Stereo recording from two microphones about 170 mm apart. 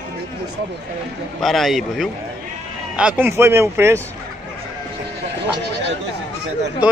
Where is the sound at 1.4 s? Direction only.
Centre (ahead or behind); by 4.0 s 15° right (ahead or behind).